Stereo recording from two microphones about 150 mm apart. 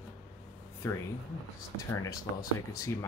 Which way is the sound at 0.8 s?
20° left (ahead or behind).